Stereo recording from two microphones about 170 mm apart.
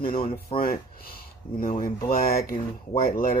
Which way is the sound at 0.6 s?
60° left (ahead or behind).